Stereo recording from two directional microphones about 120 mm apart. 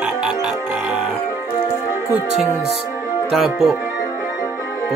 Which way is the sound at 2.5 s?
30° left (ahead or behind).